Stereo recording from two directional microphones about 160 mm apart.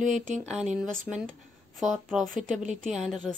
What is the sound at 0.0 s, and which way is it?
Speech, 50° right (ahead or behind).